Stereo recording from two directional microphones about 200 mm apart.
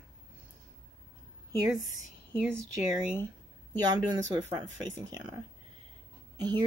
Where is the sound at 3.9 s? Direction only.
20° right (ahead or behind).